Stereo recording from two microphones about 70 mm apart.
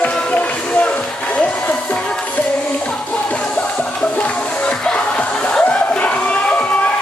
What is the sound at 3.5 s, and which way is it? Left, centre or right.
Music, centre.